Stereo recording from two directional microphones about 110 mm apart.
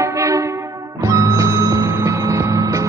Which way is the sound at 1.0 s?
30° right (ahead or behind).